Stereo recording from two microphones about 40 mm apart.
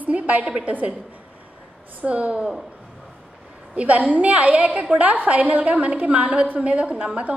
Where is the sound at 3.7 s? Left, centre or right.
Right.